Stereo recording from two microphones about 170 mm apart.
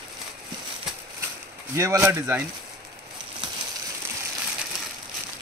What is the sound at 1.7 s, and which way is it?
Speech, 15° right (ahead or behind).